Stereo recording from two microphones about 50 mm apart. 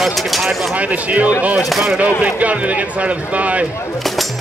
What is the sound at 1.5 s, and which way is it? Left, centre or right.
Speech, centre.